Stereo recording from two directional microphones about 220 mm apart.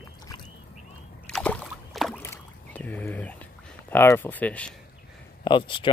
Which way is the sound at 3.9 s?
10° left (ahead or behind).